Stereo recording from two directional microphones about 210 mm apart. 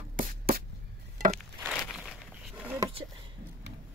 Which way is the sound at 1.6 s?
Centre (ahead or behind).